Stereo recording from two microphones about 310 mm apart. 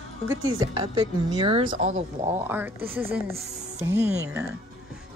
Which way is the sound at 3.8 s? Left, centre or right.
Centre.